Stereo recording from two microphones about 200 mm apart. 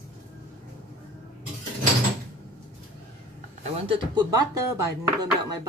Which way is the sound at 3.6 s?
30° right (ahead or behind).